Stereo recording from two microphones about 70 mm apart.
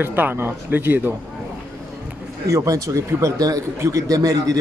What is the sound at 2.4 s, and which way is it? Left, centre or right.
A man's voice, right.